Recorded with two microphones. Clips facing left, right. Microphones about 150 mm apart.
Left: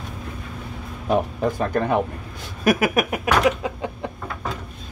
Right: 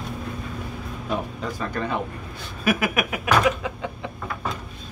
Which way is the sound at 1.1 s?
55° left (ahead or behind).